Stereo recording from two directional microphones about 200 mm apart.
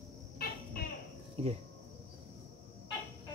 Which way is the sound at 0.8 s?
50° left (ahead or behind).